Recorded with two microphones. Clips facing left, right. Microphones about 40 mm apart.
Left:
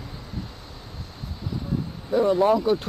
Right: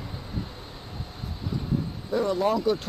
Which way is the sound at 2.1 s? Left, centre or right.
Centre.